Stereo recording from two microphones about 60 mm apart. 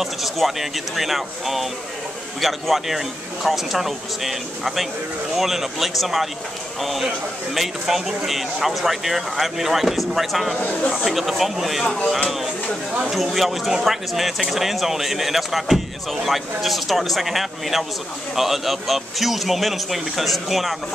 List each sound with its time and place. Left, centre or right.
0.0 s speech: centre
13.1 s speech: centre